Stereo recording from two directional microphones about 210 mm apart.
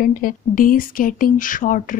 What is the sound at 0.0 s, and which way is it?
Speech, 40° left (ahead or behind).